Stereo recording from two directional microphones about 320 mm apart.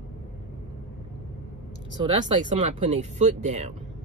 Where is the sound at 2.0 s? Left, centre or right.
Right.